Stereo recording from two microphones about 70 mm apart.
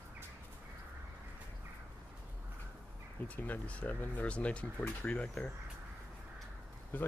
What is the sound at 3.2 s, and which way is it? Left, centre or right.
Speech, left.